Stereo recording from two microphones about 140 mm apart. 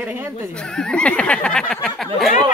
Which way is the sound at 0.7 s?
5° left (ahead or behind).